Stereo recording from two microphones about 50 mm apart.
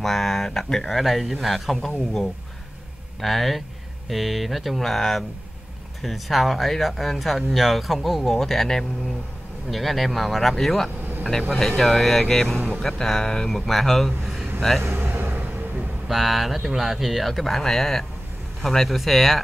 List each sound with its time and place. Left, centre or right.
0.0 s speech: centre
14.8 s a sound: right
16.1 s speech: centre